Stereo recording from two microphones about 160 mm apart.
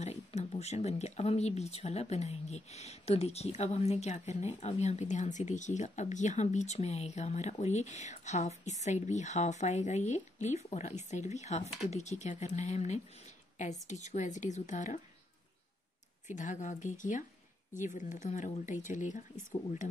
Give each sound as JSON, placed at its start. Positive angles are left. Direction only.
{"t": 0.0, "sound": "speech", "side_deg": 45}
{"t": 16.3, "sound": "speech", "side_deg": 50}